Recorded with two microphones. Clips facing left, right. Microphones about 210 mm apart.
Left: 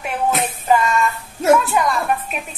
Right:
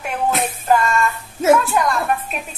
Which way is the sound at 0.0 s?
Centre (ahead or behind).